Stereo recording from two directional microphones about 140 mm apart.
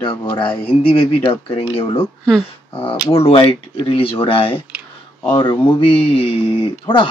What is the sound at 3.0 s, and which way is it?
Speech, 40° left (ahead or behind).